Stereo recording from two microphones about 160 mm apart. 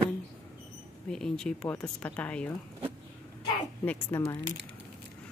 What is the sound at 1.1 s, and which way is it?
Speech, 5° left (ahead or behind).